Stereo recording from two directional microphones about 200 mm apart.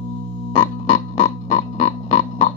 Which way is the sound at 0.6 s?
40° left (ahead or behind).